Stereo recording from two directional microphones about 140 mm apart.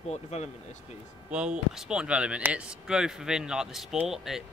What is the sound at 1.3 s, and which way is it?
Speech, 5° right (ahead or behind).